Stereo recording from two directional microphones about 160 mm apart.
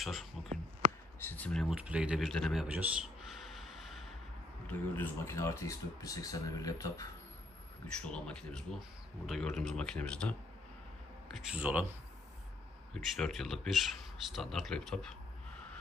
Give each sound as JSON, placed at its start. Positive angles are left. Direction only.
{"t": 0.0, "sound": "speech", "side_deg": 0}
{"t": 1.2, "sound": "speech", "side_deg": 10}
{"t": 4.6, "sound": "speech", "side_deg": 15}
{"t": 8.0, "sound": "speech", "side_deg": 5}
{"t": 11.4, "sound": "a man's voice", "side_deg": -10}
{"t": 12.9, "sound": "speech", "side_deg": 0}